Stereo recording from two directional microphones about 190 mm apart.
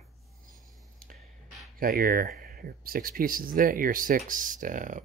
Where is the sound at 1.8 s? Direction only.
50° right (ahead or behind).